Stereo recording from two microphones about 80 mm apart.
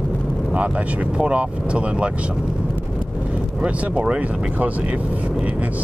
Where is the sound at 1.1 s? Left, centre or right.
Centre.